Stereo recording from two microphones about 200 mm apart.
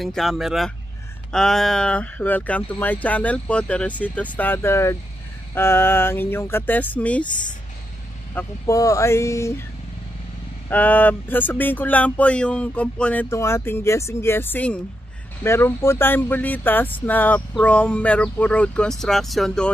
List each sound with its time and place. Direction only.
0.0 s speech: centre (ahead or behind)
8.4 s speech: 15° left (ahead or behind)
10.7 s speech: 10° left (ahead or behind)